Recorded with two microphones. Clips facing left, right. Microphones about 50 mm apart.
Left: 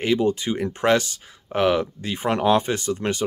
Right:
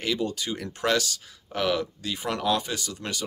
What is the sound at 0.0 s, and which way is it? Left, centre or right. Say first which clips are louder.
Speech: left 7 dB; left.